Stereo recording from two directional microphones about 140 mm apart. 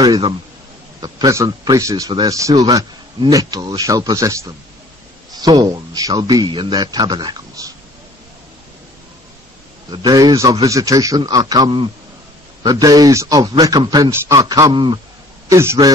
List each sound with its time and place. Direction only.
1.0 s a man's voice: 25° right (ahead or behind)
9.8 s a man's voice: 30° right (ahead or behind)
15.5 s a man's voice: 20° right (ahead or behind)